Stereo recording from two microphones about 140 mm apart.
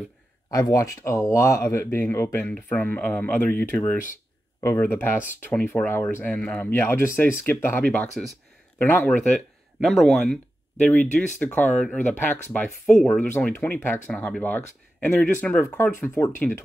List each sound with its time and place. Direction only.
0.5 s speech: 25° left (ahead or behind)
9.3 s speech: centre (ahead or behind)